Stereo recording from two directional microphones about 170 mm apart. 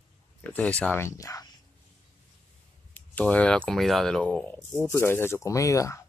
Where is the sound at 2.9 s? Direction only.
10° left (ahead or behind).